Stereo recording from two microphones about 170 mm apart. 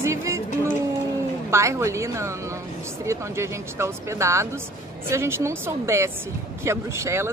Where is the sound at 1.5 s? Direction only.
15° right (ahead or behind).